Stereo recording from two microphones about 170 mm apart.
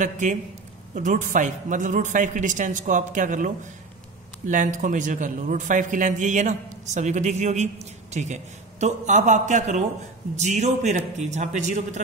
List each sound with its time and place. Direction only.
0.0 s a man's voice: 45° right (ahead or behind)